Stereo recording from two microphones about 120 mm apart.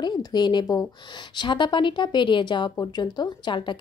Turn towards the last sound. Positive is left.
turn(degrees=40)  # may be behind; listen again after turning